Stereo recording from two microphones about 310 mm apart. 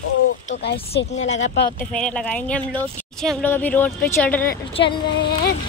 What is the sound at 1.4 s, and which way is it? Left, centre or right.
Speech, left.